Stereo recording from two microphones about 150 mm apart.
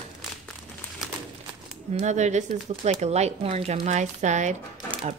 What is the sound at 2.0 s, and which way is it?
A woman's voice, 50° right (ahead or behind).